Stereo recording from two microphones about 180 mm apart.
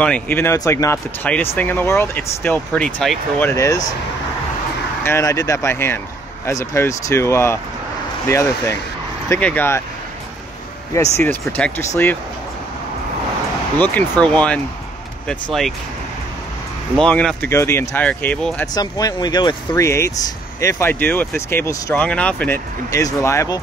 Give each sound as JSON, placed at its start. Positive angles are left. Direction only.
{"t": 0.0, "sound": "speech", "side_deg": 10}
{"t": 5.0, "sound": "speech", "side_deg": 15}
{"t": 10.9, "sound": "speech", "side_deg": 15}
{"t": 13.7, "sound": "speech", "side_deg": 10}
{"t": 16.9, "sound": "speech", "side_deg": 5}
{"t": 18.7, "sound": "speech", "side_deg": 20}
{"t": 22.8, "sound": "speech", "side_deg": 20}